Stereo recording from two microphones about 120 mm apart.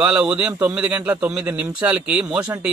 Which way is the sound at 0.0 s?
5° right (ahead or behind).